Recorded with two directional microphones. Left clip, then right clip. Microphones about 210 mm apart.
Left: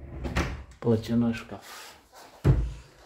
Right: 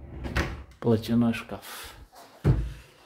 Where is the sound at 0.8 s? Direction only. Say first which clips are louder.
Right 1 dB; 15° right (ahead or behind).